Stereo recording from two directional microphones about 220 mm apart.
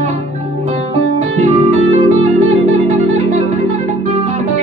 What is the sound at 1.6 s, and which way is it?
Music, 30° right (ahead or behind).